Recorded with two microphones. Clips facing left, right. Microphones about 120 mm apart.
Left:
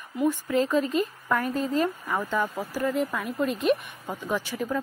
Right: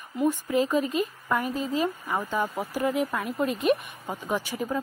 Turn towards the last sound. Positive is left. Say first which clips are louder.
# even
turn(degrees=-10)  # may be behind; listen again after turning